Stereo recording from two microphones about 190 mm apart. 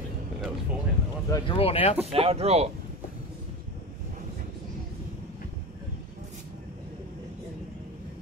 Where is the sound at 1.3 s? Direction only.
25° left (ahead or behind).